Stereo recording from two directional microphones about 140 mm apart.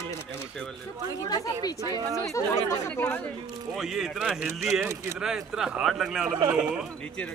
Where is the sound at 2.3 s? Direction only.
20° left (ahead or behind).